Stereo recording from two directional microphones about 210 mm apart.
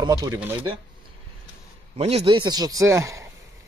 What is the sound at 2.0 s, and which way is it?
Speech, 30° right (ahead or behind).